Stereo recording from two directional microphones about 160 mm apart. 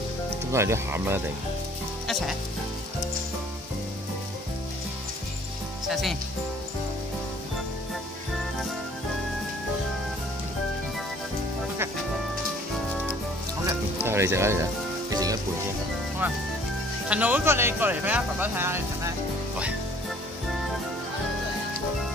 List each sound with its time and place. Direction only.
0.5 s speech: 15° right (ahead or behind)
5.9 s speech: centre (ahead or behind)
14.0 s speech: 15° right (ahead or behind)
17.1 s speech: 10° right (ahead or behind)